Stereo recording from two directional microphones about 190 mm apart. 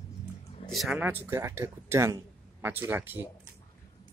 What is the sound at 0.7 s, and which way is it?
Speech, centre (ahead or behind).